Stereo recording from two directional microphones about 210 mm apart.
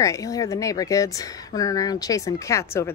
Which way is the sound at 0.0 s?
15° left (ahead or behind).